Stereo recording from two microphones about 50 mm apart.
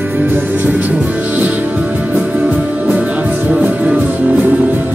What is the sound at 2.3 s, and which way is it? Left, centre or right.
Music, right.